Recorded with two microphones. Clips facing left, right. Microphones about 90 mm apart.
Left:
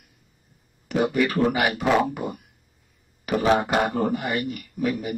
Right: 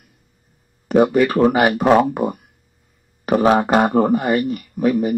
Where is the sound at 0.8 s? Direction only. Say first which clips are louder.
Right 8 dB; 45° right (ahead or behind).